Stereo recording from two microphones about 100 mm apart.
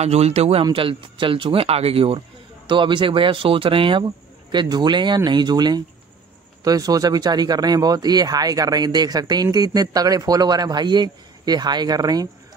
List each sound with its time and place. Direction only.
0.0 s a man's voice: 90° right
0.7 s speech: 60° right (ahead or behind); by 12.3 s 40° right (ahead or behind)